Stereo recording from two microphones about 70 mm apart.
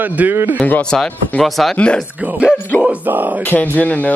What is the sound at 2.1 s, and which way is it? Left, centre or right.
Speech, right.